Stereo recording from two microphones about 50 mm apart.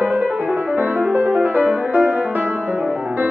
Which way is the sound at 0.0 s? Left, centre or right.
Right.